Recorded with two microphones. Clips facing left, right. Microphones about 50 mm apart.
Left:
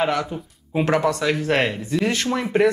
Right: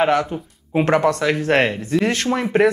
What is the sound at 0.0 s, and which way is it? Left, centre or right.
Speech, right.